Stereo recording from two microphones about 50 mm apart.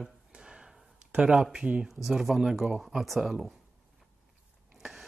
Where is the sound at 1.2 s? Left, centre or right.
Centre.